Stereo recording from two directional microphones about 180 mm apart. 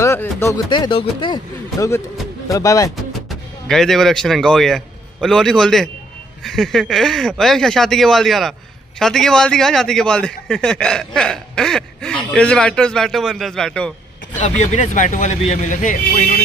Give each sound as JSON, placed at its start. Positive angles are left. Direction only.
{"t": 0.0, "sound": "speech", "side_deg": 15}
{"t": 0.7, "sound": "speech", "side_deg": 25}
{"t": 3.1, "sound": "speech", "side_deg": 0}
{"t": 14.4, "sound": "speech", "side_deg": 40}